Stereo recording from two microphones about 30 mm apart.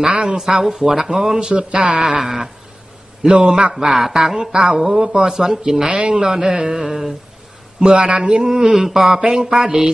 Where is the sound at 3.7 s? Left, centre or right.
Centre.